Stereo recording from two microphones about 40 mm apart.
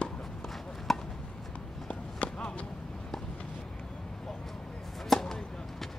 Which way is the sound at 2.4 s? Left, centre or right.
Left.